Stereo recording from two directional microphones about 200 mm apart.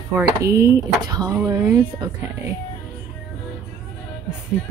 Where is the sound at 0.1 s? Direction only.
15° right (ahead or behind).